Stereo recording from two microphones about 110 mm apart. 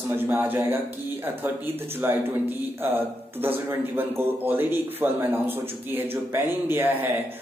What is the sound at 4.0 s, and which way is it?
Speech, 20° right (ahead or behind).